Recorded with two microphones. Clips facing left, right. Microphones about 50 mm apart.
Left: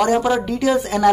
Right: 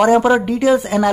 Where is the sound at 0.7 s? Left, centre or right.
Centre.